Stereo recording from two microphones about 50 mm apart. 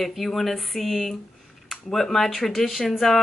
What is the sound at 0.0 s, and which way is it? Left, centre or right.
Speech, centre.